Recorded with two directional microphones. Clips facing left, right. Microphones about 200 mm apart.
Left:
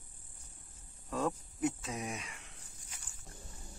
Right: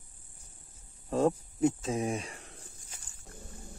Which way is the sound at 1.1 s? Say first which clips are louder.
Right 8 dB; 30° right (ahead or behind).